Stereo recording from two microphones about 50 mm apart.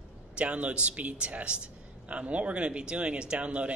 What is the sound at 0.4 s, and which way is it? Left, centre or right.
A man's voice, right.